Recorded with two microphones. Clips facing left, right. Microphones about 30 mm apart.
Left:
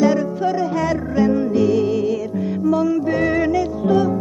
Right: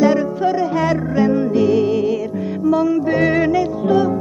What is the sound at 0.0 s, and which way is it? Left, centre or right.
Music, centre.